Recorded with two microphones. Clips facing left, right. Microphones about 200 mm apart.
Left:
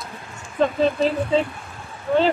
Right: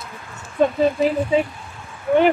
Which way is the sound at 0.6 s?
10° right (ahead or behind).